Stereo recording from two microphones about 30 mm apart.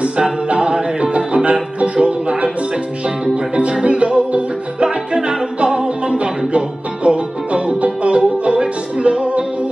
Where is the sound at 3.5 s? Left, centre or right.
Right.